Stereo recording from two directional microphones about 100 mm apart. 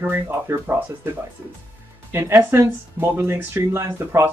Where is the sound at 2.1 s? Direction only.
25° right (ahead or behind).